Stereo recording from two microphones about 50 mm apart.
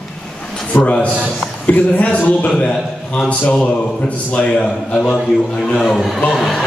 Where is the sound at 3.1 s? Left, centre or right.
Left.